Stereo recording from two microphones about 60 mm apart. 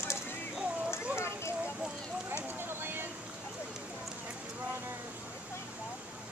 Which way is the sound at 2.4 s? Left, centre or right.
Right.